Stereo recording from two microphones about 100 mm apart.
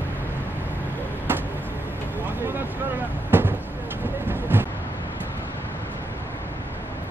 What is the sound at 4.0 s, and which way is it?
Vehicle, 20° right (ahead or behind).